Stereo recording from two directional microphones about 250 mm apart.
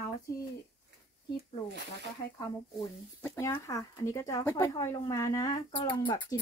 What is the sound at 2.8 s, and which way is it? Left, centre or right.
Speech, centre.